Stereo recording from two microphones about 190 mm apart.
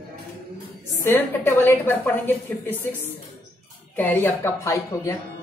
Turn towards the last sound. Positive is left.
turn(degrees=15)  # may be behind; listen again after turning